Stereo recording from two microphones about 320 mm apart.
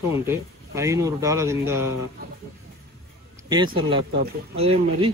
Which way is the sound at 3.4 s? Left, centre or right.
Centre.